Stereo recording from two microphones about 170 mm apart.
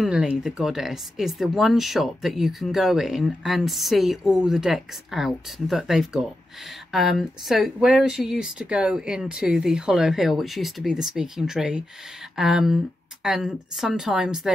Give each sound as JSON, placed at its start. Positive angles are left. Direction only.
{"t": 0.0, "sound": "speech", "side_deg": -5}